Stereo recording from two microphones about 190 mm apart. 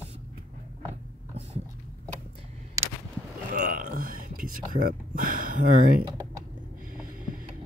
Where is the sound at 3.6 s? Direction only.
45° right (ahead or behind).